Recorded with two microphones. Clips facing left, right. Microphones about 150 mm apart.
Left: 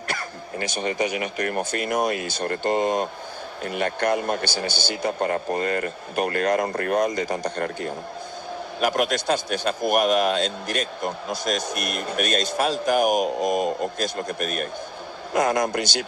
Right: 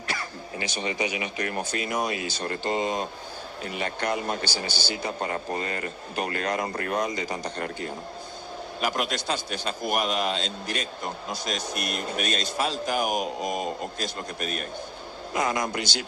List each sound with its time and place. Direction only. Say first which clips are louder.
0.1 s a man's voice: left 2 dB; 50° left (ahead or behind)